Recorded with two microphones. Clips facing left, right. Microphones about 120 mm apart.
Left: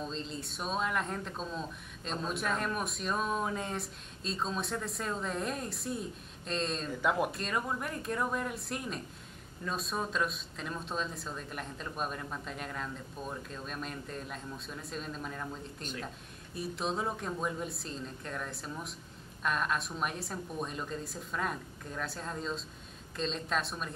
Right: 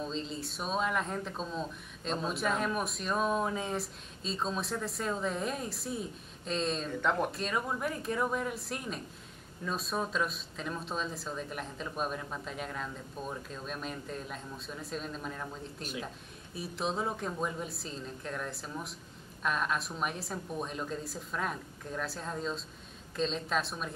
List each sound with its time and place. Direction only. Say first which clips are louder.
0.0 s speech: right 2 dB; centre (ahead or behind)